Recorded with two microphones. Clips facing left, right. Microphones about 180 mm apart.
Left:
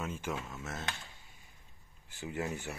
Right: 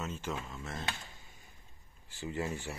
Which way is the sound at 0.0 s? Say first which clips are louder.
Left 1 dB; 10° left (ahead or behind).